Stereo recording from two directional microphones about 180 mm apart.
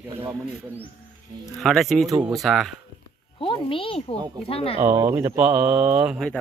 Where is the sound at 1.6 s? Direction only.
Centre (ahead or behind).